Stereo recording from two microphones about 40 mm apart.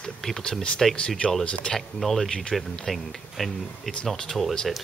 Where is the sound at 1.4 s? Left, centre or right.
Left.